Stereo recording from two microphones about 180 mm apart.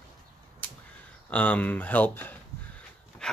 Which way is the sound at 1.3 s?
10° left (ahead or behind).